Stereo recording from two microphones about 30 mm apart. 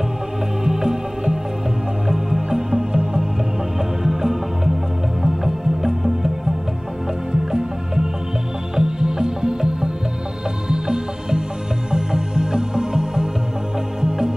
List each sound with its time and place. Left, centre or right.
0.7 s music: centre
4.0 s music: centre
7.5 s music: right